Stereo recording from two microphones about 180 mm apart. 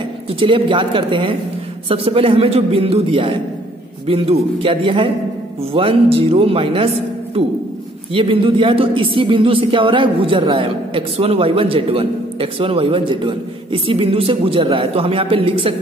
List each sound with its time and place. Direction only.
0.3 s a man's voice: 30° right (ahead or behind)
8.1 s speech: 30° right (ahead or behind)